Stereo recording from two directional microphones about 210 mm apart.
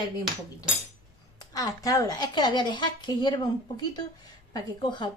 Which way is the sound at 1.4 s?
15° left (ahead or behind).